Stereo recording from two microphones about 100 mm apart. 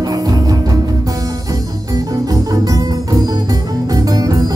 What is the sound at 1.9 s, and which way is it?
Music, 40° right (ahead or behind).